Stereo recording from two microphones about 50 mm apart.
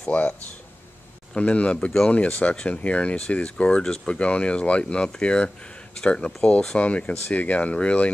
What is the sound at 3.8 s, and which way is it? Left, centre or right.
Speech, centre.